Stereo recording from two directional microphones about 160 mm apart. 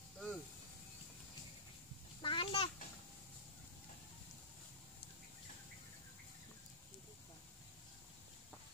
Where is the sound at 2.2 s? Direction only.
35° left (ahead or behind).